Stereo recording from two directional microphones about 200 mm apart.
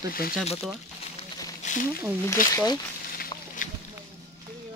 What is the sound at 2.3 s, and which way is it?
Speech, 15° left (ahead or behind).